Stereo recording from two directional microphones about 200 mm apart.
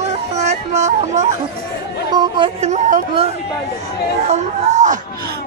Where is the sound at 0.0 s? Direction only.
35° right (ahead or behind).